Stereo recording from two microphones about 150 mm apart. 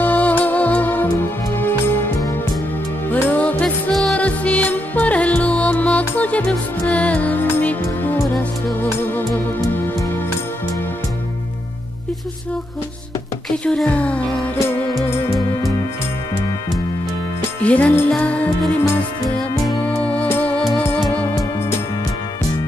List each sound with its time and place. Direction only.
0.0 s music: 10° left (ahead or behind)
13.7 s music: 5° left (ahead or behind)
15.0 s music: 25° left (ahead or behind)
17.6 s music: 10° left (ahead or behind)
19.9 s music: 10° left (ahead or behind)